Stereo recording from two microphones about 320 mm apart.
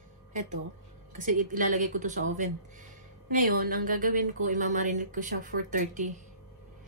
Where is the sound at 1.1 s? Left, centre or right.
Right.